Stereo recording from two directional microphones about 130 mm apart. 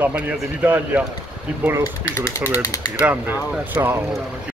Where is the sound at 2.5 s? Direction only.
25° left (ahead or behind).